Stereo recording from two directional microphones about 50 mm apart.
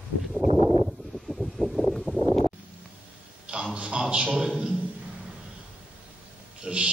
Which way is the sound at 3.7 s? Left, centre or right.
Centre.